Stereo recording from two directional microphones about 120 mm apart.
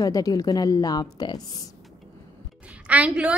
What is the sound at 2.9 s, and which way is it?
Speech, 10° right (ahead or behind).